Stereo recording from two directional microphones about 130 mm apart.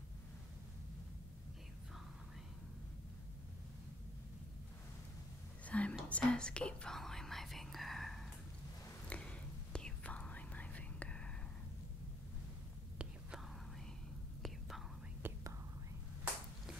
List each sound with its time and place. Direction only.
5.7 s whispering: 10° left (ahead or behind)
12.9 s whispering: 5° right (ahead or behind)
15.2 s whispering: 15° right (ahead or behind)